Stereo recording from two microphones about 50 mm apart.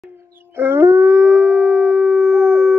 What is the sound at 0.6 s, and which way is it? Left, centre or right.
Howl, right.